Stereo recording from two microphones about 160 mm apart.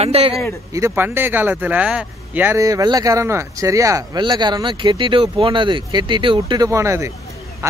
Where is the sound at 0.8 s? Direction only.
15° right (ahead or behind).